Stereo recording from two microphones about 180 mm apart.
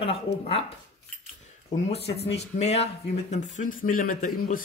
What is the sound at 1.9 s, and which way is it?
Speech, 35° left (ahead or behind).